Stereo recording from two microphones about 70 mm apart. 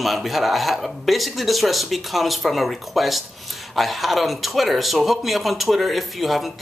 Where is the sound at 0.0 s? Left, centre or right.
Centre.